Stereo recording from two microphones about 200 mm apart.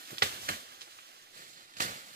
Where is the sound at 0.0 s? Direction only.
50° right (ahead or behind).